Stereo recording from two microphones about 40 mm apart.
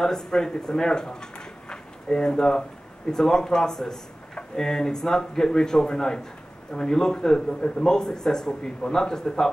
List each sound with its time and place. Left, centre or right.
0.0 s a man's voice: centre